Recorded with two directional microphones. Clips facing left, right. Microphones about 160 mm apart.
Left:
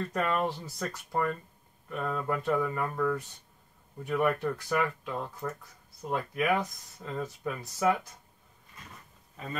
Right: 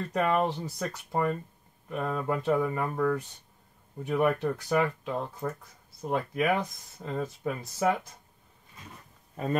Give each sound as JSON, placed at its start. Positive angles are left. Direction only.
{"t": 0.1, "sound": "speech", "side_deg": -15}